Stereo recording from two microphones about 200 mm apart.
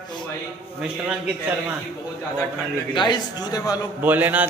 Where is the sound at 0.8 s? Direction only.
5° right (ahead or behind).